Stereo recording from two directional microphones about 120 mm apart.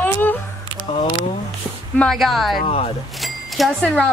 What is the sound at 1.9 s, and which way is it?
Speech, centre (ahead or behind).